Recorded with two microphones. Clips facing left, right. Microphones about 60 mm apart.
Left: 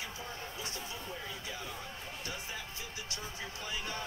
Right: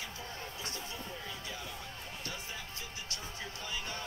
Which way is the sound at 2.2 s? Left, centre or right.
Left.